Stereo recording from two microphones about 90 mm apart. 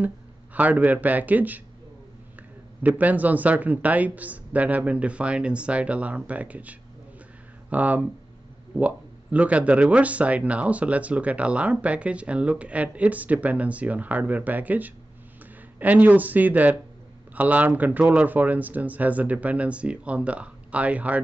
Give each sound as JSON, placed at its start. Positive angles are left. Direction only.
{"t": 0.6, "sound": "speech", "side_deg": -15}
{"t": 3.0, "sound": "speech", "side_deg": -20}